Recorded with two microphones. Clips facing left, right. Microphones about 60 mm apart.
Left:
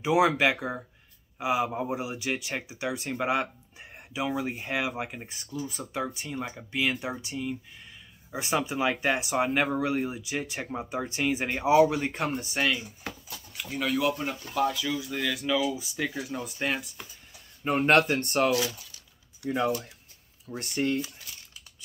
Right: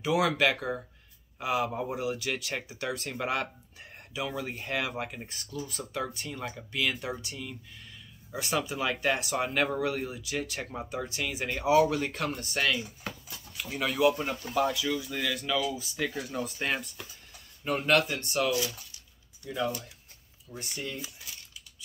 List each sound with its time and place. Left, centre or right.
0.0 s speech: left
1.7 s speech: centre
13.6 s speech: centre
17.6 s speech: left
17.9 s speech: left
19.4 s speech: left
20.5 s speech: left